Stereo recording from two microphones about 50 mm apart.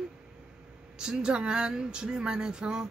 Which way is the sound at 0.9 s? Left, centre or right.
Centre.